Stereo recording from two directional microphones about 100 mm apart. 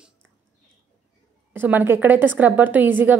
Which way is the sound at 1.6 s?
20° right (ahead or behind).